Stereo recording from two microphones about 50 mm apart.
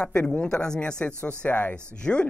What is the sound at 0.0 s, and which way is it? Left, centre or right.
Speech, left.